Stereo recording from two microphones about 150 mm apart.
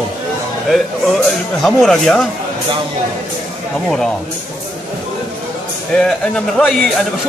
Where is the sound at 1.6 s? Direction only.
5° left (ahead or behind).